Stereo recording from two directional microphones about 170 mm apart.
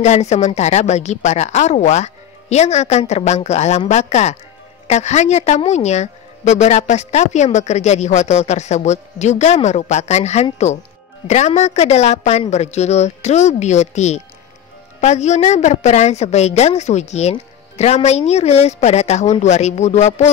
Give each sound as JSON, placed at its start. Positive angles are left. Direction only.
{"t": 0.0, "sound": "a woman's voice", "side_deg": 40}